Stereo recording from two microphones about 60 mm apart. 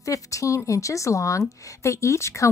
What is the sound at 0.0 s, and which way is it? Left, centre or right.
A woman's voice, left.